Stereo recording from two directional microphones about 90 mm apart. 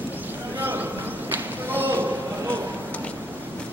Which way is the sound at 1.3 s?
20° right (ahead or behind).